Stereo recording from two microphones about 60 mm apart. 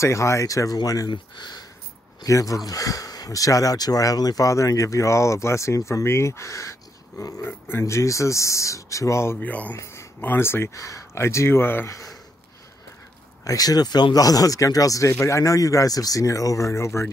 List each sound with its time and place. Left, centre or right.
0.0 s speech: left
2.2 s speech: left
7.4 s speech: left
7.8 s speech: left
9.4 s speech: left
10.2 s speech: left
10.7 s speech: left
11.9 s a sound: left
13.4 s speech: left
15.1 s speech: left